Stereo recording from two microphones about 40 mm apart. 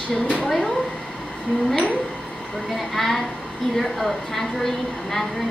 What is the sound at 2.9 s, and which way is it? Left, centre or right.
A woman's voice, centre.